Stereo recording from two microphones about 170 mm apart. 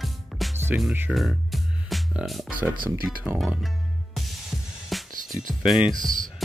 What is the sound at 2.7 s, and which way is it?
Speech, 55° right (ahead or behind).